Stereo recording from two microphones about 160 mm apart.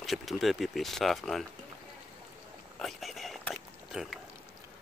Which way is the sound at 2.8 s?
Centre (ahead or behind).